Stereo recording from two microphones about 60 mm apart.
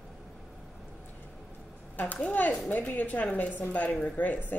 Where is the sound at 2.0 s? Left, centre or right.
Left.